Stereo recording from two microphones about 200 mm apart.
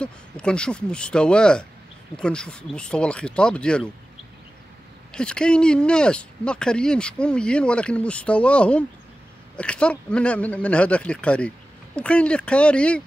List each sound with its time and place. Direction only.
0.0 s speech: 5° left (ahead or behind)
5.1 s speech: 5° left (ahead or behind)